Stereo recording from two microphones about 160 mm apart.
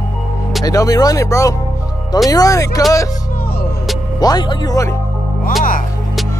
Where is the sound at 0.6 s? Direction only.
20° left (ahead or behind).